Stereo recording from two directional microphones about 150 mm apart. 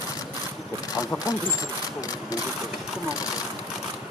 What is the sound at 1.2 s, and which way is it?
Speech, 25° left (ahead or behind).